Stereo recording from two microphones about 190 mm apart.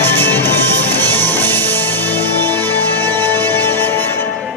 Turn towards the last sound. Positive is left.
turn(degrees=10)  # may be behind; listen again after turning